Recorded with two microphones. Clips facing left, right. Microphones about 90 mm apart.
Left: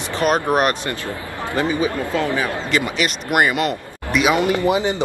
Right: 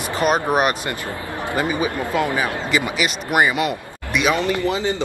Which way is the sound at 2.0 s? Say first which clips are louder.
Even; 20° right (ahead or behind).